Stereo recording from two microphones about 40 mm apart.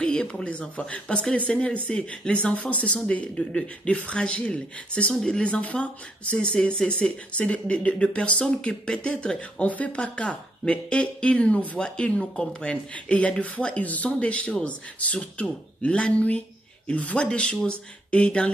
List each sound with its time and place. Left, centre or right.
0.0 s a sound: left
0.5 s speech: left
5.4 s speech: left
9.6 s speech: left
9.9 s speech: left